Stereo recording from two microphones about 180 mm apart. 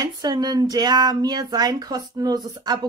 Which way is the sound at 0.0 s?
20° right (ahead or behind).